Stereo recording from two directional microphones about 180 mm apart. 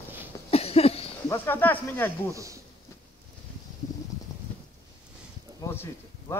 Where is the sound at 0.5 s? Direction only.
35° left (ahead or behind).